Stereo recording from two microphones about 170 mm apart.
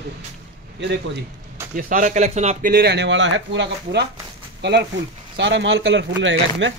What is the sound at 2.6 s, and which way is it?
A man's voice, 65° right (ahead or behind).